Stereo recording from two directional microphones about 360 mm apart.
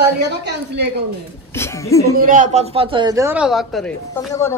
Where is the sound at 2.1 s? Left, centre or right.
Right.